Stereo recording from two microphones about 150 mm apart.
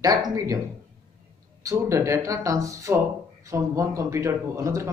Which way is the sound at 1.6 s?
20° right (ahead or behind).